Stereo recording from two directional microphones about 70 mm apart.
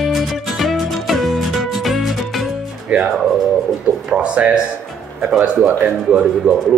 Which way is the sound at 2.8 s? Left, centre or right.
Centre.